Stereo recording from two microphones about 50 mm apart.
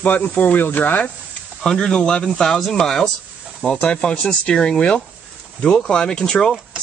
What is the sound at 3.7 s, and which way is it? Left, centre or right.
Speech, left.